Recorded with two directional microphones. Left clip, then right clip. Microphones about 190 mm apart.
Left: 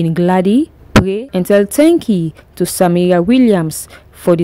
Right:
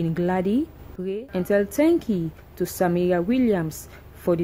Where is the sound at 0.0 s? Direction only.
45° left (ahead or behind).